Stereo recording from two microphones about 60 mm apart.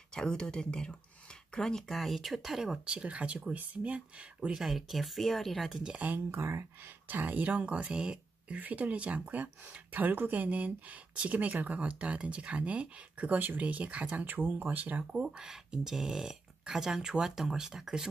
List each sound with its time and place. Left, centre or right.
0.1 s speech: centre
4.6 s speech: centre
5.8 s speech: centre
6.3 s speech: right
7.1 s speech: right
8.5 s speech: right
15.2 s speech: centre